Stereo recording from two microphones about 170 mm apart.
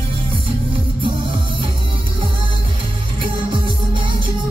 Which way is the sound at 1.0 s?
30° right (ahead or behind).